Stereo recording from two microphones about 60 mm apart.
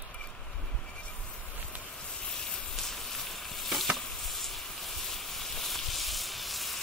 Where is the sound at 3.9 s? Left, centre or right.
Centre.